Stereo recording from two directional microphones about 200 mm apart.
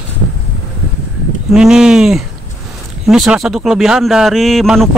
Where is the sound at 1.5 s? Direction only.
5° right (ahead or behind).